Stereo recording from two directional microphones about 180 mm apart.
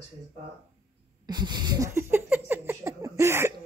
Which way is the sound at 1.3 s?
25° right (ahead or behind).